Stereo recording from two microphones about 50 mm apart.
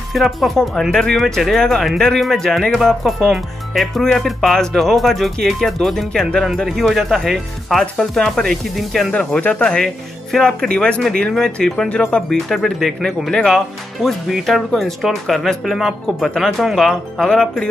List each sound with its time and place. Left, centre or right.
0.1 s speech: centre
9.6 s speech: centre
10.3 s speech: centre
10.7 s speech: centre
11.3 s speech: centre
11.9 s speech: left
12.3 s speech: centre
14.0 s speech: centre
14.4 s speech: centre
17.3 s speech: centre